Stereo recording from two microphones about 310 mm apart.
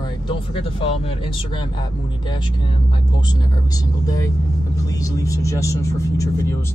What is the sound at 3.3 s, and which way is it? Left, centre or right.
Speech, centre.